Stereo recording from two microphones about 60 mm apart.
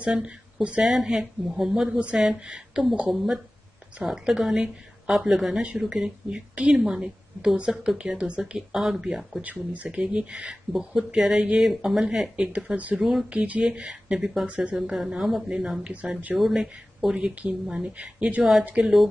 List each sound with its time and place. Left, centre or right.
0.0 s speech: centre
1.9 s a woman's voice: right
3.1 s speech: centre
5.6 s speech: centre
9.4 s speech: right
11.6 s speech: centre; by 12.9 s right
12.9 s speech: centre
13.3 s speech: right
14.8 s a woman's voice: centre
15.8 s speech: right
16.3 s speech: centre
17.1 s speech: centre